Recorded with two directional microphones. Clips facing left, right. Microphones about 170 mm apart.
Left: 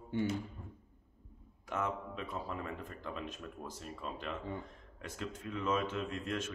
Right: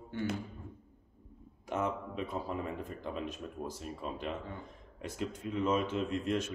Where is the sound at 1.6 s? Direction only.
20° right (ahead or behind).